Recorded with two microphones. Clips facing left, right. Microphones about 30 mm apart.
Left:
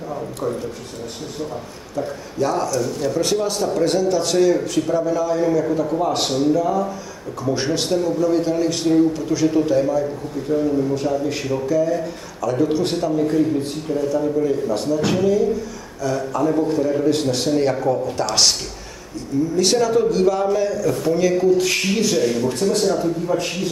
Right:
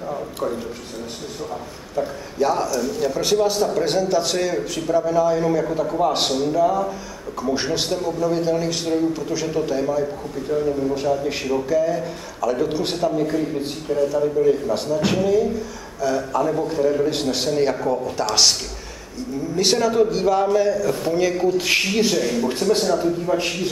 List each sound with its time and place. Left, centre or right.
0.1 s speech: centre
2.0 s speech: centre
4.9 s speech: centre
19.5 s speech: centre
22.1 s speech: centre
22.5 s speech: right